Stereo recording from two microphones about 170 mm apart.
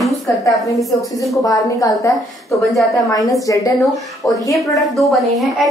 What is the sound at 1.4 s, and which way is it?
A woman's voice, 20° left (ahead or behind).